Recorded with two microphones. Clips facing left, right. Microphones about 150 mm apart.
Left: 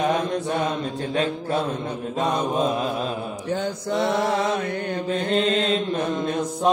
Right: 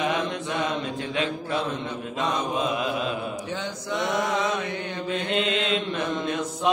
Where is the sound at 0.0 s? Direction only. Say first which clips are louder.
Left 4 dB; 40° left (ahead or behind).